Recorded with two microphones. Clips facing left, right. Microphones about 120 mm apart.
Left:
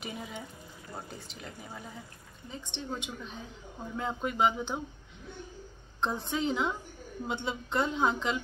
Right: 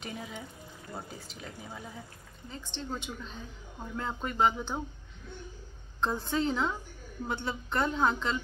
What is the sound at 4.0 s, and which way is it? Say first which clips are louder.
Speech: even; 15° left (ahead or behind).